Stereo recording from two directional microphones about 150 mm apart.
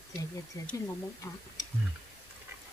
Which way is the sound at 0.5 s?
20° left (ahead or behind).